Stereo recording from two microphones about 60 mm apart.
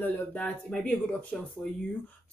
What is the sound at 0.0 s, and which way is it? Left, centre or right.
Speech, left.